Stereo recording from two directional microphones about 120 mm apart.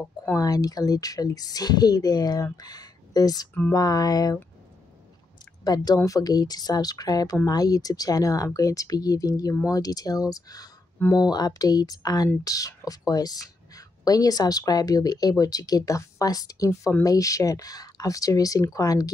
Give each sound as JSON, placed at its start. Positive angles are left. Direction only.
{"t": 0.0, "sound": "speech", "side_deg": 5}
{"t": 0.4, "sound": "speech", "side_deg": 30}
{"t": 5.6, "sound": "speech", "side_deg": 35}